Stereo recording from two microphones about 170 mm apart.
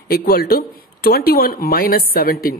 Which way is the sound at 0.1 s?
65° left (ahead or behind).